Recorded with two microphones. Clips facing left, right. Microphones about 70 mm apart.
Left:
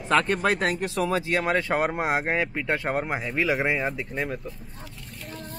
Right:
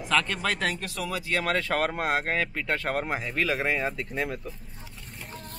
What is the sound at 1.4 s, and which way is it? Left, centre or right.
Speech, centre.